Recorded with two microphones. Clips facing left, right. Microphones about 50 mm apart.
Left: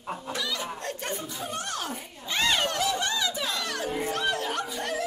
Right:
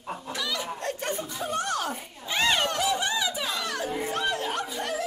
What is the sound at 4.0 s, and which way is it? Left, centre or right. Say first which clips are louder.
Chuckle: left 1 dB; centre.